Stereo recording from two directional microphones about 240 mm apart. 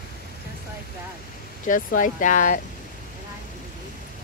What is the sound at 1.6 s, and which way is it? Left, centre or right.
Speech, left.